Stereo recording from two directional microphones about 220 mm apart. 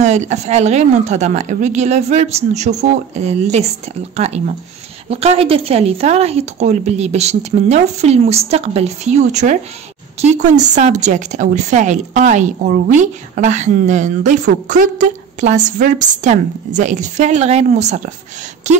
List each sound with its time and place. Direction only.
0.0 s speech: 30° right (ahead or behind)
5.1 s a woman's voice: 25° right (ahead or behind)